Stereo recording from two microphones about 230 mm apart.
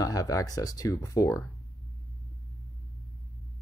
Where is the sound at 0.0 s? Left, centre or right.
Centre.